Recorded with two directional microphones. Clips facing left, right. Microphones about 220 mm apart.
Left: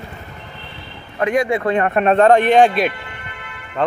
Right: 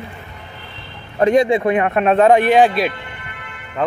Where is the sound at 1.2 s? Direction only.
30° right (ahead or behind).